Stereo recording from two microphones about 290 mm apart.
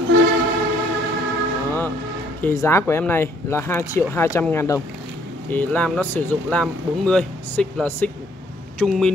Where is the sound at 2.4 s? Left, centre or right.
Centre.